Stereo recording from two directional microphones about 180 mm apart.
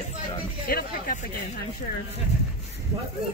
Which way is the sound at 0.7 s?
55° left (ahead or behind).